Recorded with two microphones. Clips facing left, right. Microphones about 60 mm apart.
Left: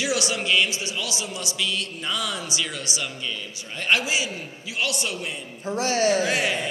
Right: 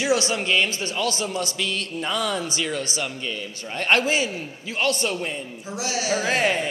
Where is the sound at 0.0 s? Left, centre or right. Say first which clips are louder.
Right 3 dB; right.